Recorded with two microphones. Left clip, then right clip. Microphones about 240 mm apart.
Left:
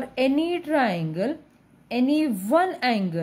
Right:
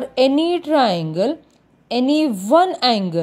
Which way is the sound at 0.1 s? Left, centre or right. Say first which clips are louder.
Right 7 dB; right.